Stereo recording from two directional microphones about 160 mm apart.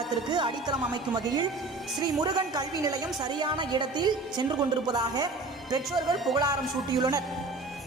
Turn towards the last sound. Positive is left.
turn(degrees=-25)  # may be behind; listen again after turning